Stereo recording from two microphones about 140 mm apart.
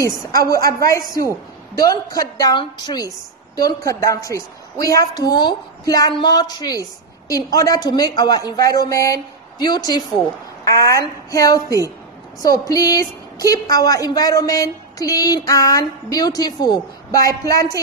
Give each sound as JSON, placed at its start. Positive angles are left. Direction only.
{"t": 0.0, "sound": "a woman's voice", "side_deg": 25}